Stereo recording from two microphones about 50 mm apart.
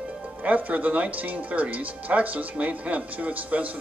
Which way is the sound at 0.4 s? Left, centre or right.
Right.